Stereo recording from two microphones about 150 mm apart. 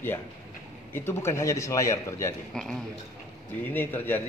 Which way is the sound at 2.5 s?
5° left (ahead or behind).